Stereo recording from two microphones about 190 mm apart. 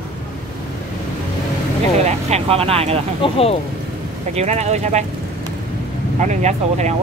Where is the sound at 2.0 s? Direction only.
35° right (ahead or behind).